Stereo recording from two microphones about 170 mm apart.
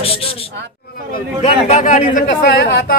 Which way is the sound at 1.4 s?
45° left (ahead or behind).